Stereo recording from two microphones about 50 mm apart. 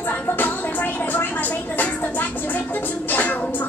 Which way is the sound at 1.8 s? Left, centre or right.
Left.